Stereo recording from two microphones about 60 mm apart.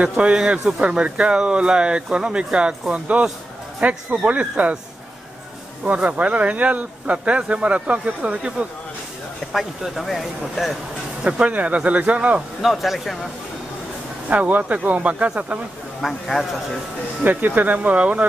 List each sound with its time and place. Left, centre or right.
0.2 s speech: centre
5.9 s speech: right
9.5 s speech: centre
11.2 s speech: centre
12.6 s speech: centre
14.3 s speech: right
16.0 s speech: centre
17.2 s speech: right